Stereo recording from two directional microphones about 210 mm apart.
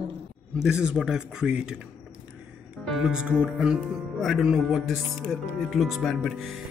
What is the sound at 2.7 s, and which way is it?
Speech, centre (ahead or behind).